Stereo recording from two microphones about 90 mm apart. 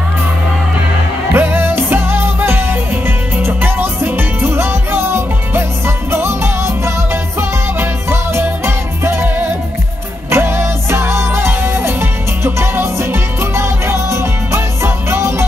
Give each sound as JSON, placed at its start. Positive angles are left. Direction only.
{"t": 1.3, "sound": "music", "side_deg": -25}
{"t": 10.3, "sound": "music", "side_deg": -25}